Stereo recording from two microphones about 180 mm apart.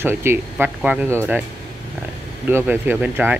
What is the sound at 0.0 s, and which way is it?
Speech, 10° right (ahead or behind).